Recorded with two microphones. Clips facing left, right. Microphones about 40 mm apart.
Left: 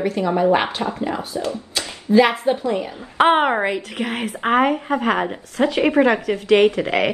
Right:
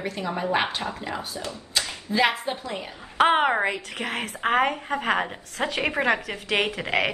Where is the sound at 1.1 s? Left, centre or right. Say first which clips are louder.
Left 8 dB; left.